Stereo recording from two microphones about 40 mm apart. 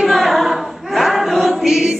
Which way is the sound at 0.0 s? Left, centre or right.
Centre.